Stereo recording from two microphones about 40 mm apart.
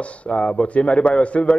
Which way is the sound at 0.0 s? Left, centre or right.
Left.